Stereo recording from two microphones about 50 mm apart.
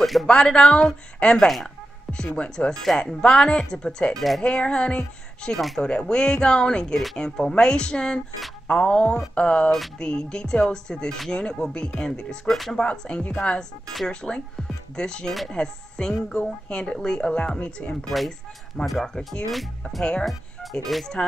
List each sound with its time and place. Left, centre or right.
0.0 s speech: centre
0.3 s speech: centre
12.5 s speech: centre
12.8 s speech: centre
19.0 s speech: centre
20.9 s speech: centre